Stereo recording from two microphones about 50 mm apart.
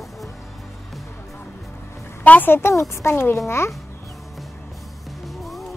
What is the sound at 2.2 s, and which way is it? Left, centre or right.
Speech, left.